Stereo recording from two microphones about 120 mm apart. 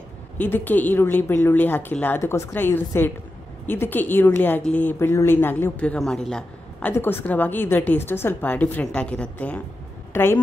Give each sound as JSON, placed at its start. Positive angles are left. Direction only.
{"t": 0.4, "sound": "a woman's voice", "side_deg": 15}
{"t": 6.9, "sound": "a woman's voice", "side_deg": 20}